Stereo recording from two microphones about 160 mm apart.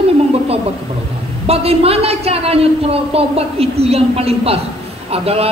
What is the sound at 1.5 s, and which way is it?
A man's voice, 40° right (ahead or behind).